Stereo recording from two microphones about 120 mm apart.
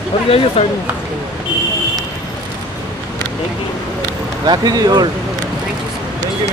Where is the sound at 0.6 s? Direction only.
50° left (ahead or behind).